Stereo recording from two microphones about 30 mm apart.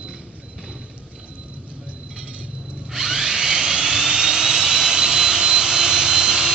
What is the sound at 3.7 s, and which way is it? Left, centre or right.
Jet engine, right.